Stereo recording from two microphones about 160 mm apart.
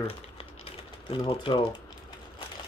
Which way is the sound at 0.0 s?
35° left (ahead or behind).